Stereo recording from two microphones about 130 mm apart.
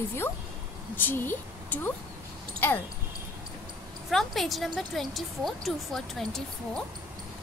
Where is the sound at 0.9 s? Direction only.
15° left (ahead or behind).